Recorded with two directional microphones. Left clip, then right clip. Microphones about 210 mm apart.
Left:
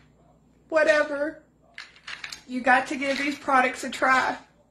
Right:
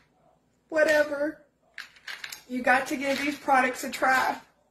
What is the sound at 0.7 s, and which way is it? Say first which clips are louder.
Speech: left 2 dB; 10° left (ahead or behind).